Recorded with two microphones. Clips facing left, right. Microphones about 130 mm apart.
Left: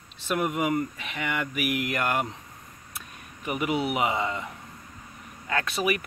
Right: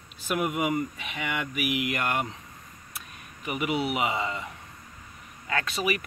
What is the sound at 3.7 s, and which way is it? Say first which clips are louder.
Speech: left 1 dB; 5° right (ahead or behind).